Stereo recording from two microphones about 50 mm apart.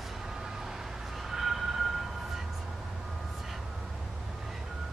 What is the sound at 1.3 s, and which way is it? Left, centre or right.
Vehicle, centre.